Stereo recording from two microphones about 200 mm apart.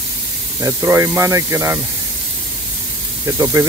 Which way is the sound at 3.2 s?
15° right (ahead or behind).